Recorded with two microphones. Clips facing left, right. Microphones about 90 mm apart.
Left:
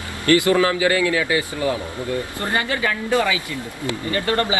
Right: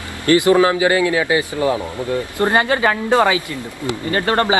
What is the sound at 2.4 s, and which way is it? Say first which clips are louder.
A woman's voice: right 8 dB; 55° right (ahead or behind).